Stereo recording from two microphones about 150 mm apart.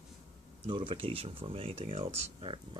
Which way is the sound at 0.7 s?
35° right (ahead or behind).